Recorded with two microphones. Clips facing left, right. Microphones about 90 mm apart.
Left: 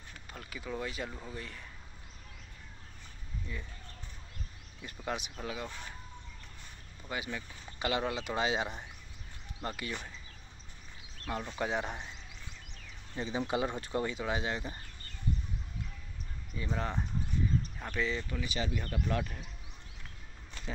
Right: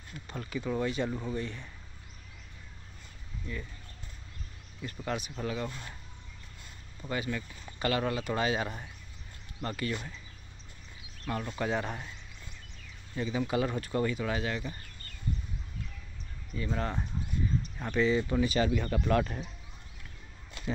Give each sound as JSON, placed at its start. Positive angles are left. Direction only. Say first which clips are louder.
{"t": 0.3, "sound": "speech", "louder": "right 7 dB", "side_deg": 0}
{"t": 5.0, "sound": "speech", "louder": "right 3 dB", "side_deg": 15}
{"t": 7.1, "sound": "speech", "louder": "right 4 dB", "side_deg": 15}
{"t": 11.2, "sound": "speech", "louder": "right 2 dB", "side_deg": 15}
{"t": 13.1, "sound": "speech", "louder": "right 3 dB", "side_deg": 25}
{"t": 16.5, "sound": "speech", "louder": "right 3 dB", "side_deg": 15}
{"t": 17.7, "sound": "speech", "louder": "right 7 dB", "side_deg": 0}
{"t": 18.3, "sound": "speech", "louder": "right 10 dB", "side_deg": -35}
{"t": 18.6, "sound": "speech", "louder": "right 7 dB", "side_deg": -75}